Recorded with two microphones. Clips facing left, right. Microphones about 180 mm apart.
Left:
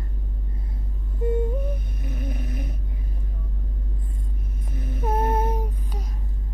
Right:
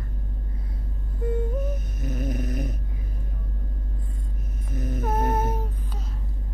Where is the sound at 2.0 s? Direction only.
45° right (ahead or behind).